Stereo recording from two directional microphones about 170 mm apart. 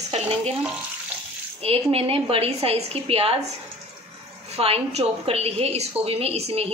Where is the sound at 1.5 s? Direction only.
35° right (ahead or behind).